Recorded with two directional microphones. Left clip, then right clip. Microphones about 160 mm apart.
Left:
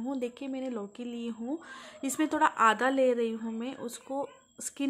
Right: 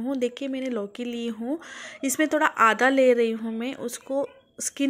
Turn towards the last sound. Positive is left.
turn(degrees=-20)  # may be behind; listen again after turning